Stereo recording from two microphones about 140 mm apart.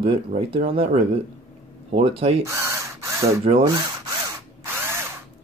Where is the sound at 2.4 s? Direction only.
20° right (ahead or behind).